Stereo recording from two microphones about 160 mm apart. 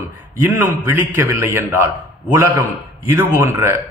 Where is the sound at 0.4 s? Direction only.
15° right (ahead or behind).